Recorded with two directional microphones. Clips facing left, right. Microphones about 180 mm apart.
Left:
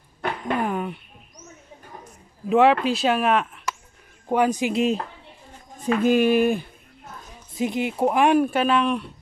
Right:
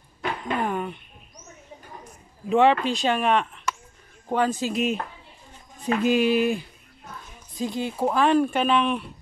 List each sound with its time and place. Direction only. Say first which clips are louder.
0.6 s speech: even; 5° left (ahead or behind)
2.5 s speech: left 2 dB; 5° left (ahead or behind)
4.7 s speech: left 4 dB; 30° left (ahead or behind)
5.8 s speech: left 2 dB; 45° left (ahead or behind)
7.5 s speech: left 3 dB; 20° left (ahead or behind); by 9.1 s centre (ahead or behind)